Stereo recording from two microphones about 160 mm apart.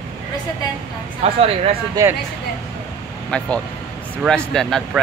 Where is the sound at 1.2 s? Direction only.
40° right (ahead or behind).